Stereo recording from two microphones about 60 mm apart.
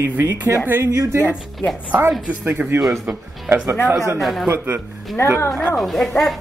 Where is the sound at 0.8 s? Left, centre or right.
Right.